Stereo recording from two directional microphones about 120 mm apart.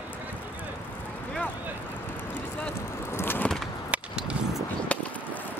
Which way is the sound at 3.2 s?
20° left (ahead or behind).